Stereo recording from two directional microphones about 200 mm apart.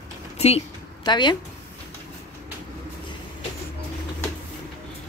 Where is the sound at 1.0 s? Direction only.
20° left (ahead or behind).